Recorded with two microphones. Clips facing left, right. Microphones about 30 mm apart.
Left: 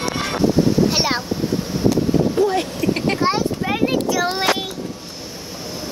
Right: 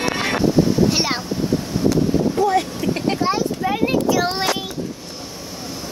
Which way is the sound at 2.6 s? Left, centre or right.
Left.